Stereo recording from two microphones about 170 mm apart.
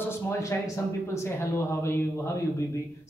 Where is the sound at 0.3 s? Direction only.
15° left (ahead or behind).